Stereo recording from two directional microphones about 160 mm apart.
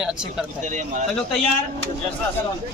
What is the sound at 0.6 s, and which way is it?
Speech, 50° right (ahead or behind).